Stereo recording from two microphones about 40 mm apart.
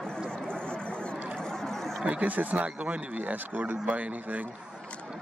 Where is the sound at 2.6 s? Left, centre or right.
Right.